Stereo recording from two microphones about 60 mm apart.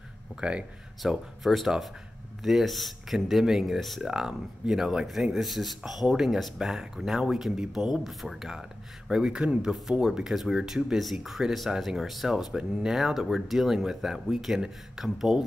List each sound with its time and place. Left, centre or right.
0.4 s speech: centre
1.0 s speech: centre